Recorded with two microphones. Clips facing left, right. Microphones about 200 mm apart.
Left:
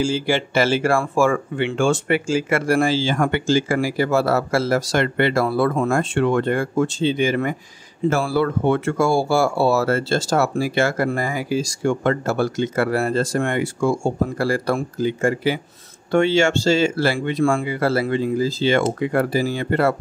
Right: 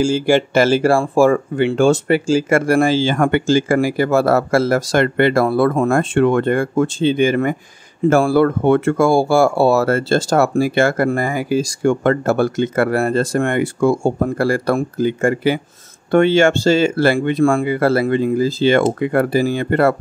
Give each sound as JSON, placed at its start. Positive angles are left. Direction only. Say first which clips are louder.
{"t": 0.0, "sound": "speech", "louder": "right 6 dB", "side_deg": -45}
{"t": 2.6, "sound": "speech", "louder": "right 4 dB", "side_deg": -55}